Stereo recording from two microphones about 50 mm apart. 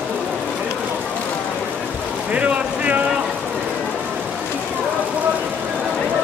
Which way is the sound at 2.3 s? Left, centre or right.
Right.